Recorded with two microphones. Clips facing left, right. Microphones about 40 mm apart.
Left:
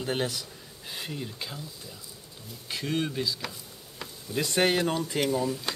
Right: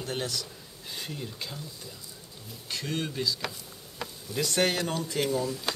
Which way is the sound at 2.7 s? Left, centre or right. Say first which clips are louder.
Left 3 dB; centre.